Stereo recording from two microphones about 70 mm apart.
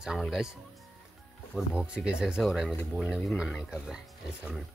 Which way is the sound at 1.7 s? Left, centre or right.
Centre.